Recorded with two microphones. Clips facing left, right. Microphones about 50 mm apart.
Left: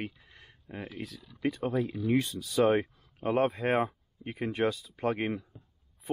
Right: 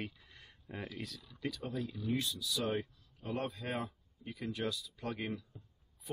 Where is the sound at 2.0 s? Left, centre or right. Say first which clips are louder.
Left 8 dB; left.